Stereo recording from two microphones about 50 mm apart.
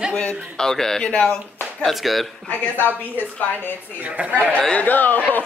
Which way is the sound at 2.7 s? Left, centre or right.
Left.